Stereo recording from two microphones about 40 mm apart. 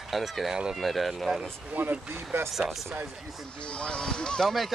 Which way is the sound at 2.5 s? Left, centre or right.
Centre.